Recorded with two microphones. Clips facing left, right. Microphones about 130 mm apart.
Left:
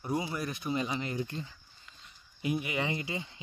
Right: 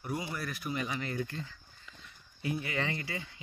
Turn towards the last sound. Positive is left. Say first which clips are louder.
# left 2 dB
turn(degrees=20)  # may be behind; listen again after turning